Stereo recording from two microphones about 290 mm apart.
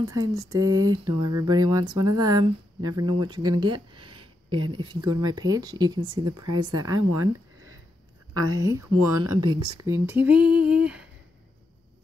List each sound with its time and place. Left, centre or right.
0.0 s speech: centre
1.0 s a sound: right
1.4 s speech: centre
7.2 s a sound: right
8.5 s speech: centre
10.0 s female singing: centre